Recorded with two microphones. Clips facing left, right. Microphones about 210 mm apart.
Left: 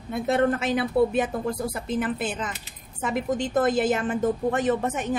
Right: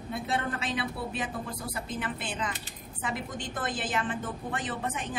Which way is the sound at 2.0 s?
45° left (ahead or behind).